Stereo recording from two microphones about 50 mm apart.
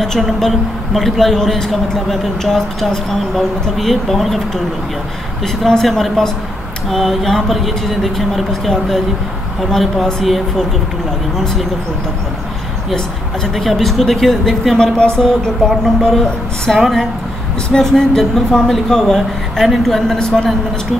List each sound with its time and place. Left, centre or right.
0.0 s speech: centre
5.6 s speech: centre
13.6 s speech: centre
15.0 s speech: centre
20.2 s speech: centre